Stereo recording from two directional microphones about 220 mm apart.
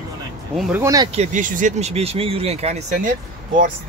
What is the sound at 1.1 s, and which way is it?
Speech, 30° right (ahead or behind).